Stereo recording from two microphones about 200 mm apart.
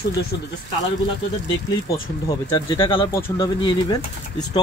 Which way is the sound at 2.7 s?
25° left (ahead or behind).